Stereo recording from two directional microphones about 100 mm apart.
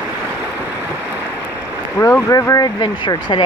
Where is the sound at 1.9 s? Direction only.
20° left (ahead or behind).